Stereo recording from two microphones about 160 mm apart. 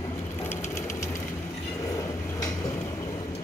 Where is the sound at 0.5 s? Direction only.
15° left (ahead or behind).